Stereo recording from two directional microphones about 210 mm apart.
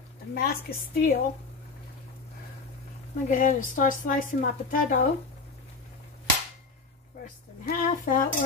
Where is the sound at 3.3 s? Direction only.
40° left (ahead or behind).